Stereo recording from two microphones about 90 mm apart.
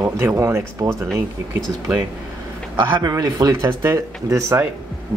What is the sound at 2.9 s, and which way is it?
Speech, 45° right (ahead or behind).